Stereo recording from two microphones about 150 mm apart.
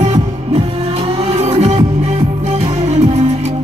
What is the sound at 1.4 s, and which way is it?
Music, 45° right (ahead or behind).